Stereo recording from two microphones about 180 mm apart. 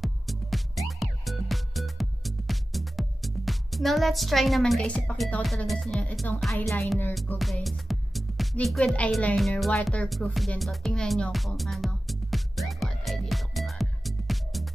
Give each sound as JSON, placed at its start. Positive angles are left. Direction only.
{"t": 0.0, "sound": "music", "side_deg": 0}